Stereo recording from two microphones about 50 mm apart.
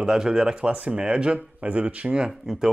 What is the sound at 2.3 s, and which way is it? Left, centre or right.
Speech, centre.